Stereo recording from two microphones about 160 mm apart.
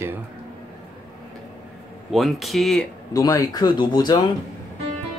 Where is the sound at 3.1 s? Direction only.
20° left (ahead or behind).